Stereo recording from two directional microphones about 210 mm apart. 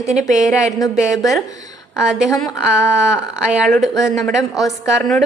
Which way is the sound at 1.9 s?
5° right (ahead or behind).